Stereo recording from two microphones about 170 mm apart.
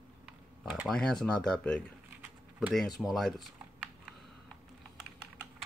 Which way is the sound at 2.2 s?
5° right (ahead or behind).